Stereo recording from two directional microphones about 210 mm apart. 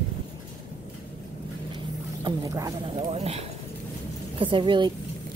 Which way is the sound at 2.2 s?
15° right (ahead or behind).